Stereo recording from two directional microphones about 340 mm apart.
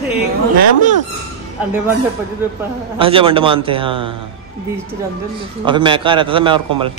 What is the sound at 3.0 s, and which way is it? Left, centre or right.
A man's voice, centre.